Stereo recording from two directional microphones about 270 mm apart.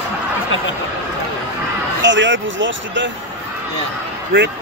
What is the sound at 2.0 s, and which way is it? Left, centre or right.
Speech, right.